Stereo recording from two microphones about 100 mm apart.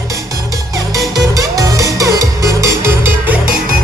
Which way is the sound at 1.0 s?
35° right (ahead or behind).